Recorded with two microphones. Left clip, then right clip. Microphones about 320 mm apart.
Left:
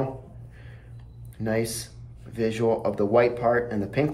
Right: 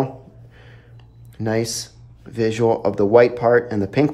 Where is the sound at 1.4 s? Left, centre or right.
Centre.